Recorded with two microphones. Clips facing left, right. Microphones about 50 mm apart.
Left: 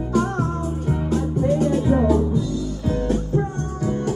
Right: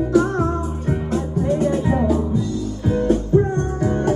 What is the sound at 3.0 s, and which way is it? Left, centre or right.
Music, right.